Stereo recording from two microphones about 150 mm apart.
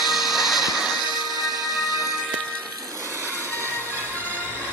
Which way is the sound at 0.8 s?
30° left (ahead or behind).